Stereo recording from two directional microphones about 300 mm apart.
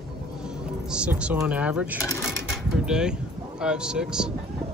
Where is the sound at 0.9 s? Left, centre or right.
Centre.